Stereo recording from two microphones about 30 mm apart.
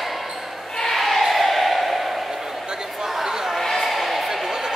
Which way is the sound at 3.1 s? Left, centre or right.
Centre.